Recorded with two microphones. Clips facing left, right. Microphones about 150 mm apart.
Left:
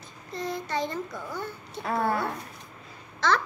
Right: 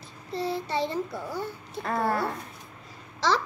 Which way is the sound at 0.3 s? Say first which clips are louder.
Right 2 dB; 30° right (ahead or behind).